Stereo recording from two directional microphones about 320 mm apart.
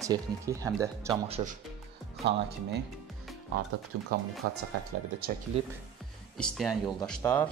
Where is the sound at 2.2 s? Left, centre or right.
Right.